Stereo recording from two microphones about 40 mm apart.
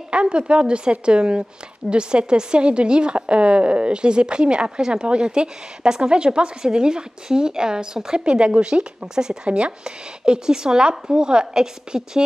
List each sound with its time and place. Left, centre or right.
0.1 s speech: right